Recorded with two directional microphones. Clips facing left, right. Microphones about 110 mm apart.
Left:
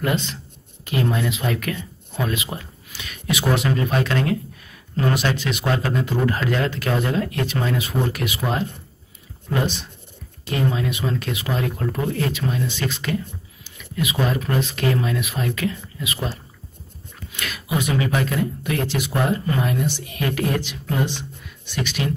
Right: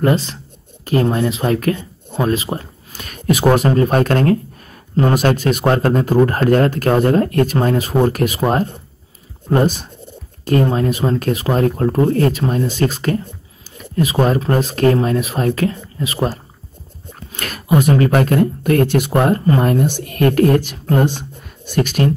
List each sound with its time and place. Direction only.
0.0 s speech: 35° right (ahead or behind)